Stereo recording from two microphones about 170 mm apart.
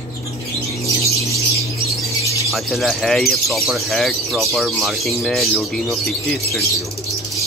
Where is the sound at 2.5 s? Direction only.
Centre (ahead or behind).